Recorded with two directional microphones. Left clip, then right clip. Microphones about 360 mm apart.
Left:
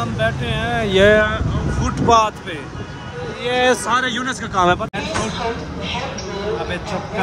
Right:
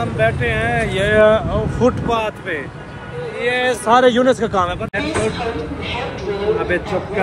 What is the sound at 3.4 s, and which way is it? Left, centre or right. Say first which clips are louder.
Speech: left 1 dB; centre.